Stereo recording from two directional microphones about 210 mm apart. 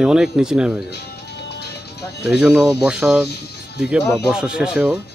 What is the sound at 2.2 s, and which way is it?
Speech, centre (ahead or behind).